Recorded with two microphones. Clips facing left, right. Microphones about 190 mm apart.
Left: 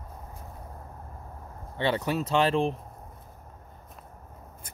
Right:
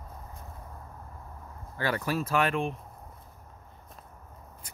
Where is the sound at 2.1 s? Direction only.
25° left (ahead or behind).